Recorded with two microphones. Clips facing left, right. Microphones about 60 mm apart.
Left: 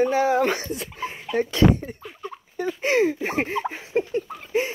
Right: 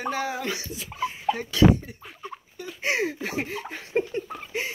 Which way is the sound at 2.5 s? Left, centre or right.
Left.